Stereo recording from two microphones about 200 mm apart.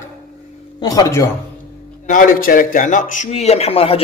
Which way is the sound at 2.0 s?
40° left (ahead or behind).